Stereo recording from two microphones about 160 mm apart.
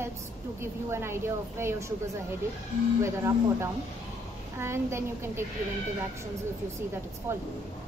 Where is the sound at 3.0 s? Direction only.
15° right (ahead or behind).